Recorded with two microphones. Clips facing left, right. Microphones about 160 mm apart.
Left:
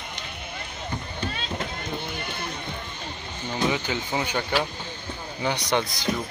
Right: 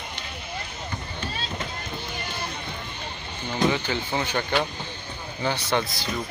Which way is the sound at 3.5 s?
15° left (ahead or behind).